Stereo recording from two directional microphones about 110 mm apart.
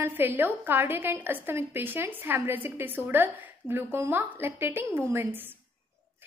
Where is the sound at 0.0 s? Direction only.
20° right (ahead or behind).